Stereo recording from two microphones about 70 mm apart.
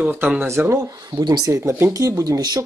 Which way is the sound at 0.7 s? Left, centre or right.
Right.